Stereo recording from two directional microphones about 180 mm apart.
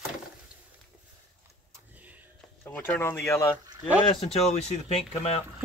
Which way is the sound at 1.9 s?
10° right (ahead or behind).